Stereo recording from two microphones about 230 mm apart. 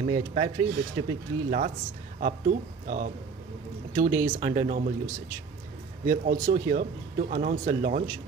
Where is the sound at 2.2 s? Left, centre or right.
Right.